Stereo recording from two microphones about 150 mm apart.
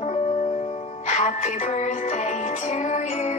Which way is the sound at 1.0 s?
50° left (ahead or behind).